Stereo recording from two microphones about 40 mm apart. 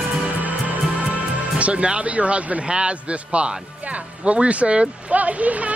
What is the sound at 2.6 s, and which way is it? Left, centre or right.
A man's voice, right.